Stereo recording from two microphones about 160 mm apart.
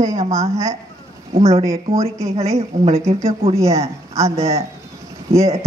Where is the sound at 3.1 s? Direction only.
20° right (ahead or behind).